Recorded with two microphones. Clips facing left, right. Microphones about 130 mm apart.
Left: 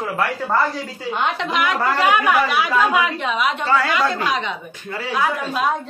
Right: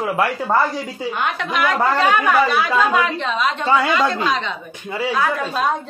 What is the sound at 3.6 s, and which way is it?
Speech, 20° right (ahead or behind).